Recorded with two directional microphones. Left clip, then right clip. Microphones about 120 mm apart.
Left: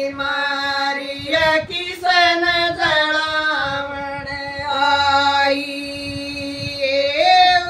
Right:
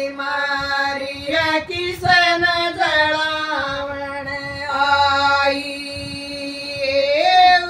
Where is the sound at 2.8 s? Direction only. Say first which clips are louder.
Right 2 dB; 40° left (ahead or behind).